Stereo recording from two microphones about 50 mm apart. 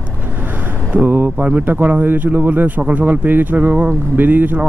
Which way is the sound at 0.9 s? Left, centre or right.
Right.